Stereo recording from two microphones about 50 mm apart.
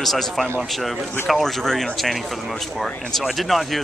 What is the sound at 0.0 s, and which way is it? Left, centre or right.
Speech, centre.